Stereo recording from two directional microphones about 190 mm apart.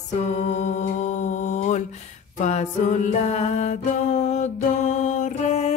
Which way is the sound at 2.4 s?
40° left (ahead or behind).